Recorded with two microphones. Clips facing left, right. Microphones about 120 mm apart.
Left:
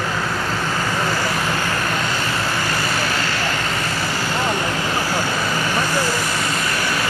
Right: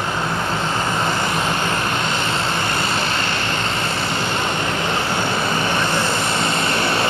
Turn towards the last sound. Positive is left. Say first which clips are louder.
# right 3 dB
turn(degrees=-25)  # may be behind; listen again after turning